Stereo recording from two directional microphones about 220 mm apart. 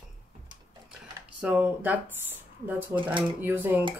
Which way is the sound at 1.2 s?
5° right (ahead or behind).